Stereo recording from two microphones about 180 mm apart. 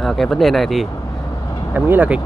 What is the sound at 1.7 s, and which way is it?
Speech, 10° right (ahead or behind).